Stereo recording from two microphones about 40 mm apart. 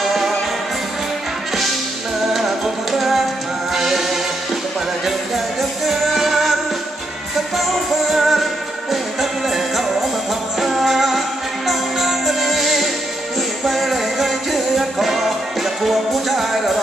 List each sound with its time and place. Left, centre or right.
0.0 s music: centre
2.3 s music: centre